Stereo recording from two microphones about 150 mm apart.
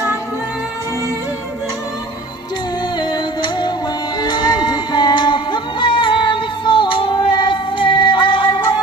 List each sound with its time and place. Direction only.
3.0 s music: 30° left (ahead or behind)